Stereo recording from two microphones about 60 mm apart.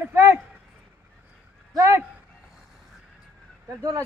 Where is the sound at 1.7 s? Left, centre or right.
Right.